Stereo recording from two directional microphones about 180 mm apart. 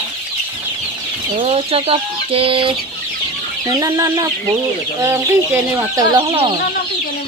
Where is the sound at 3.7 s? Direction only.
20° right (ahead or behind).